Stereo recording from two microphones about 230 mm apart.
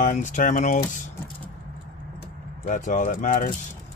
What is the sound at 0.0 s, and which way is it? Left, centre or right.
Speech, left.